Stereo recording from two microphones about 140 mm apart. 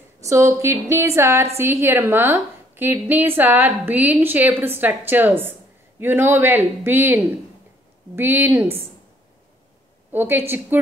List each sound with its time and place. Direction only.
0.2 s a woman's voice: 20° right (ahead or behind)
10.1 s a woman's voice: 15° right (ahead or behind)